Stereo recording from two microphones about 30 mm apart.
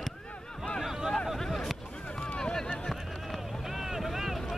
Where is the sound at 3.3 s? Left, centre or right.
Centre.